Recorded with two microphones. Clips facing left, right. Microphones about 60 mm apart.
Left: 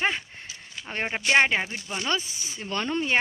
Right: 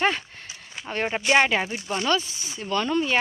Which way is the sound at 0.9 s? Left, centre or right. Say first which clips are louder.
Right 3 dB; left.